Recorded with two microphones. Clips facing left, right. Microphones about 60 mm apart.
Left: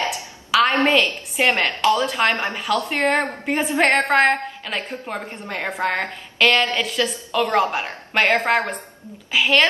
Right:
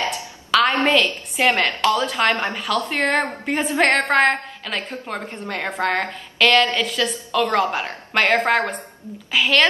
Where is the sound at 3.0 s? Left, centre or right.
Centre.